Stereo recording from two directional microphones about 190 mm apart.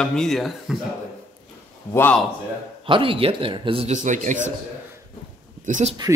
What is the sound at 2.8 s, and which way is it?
A man's voice, 25° right (ahead or behind).